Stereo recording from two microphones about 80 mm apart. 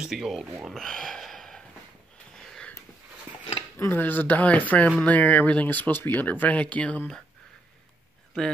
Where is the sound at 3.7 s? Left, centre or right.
Left.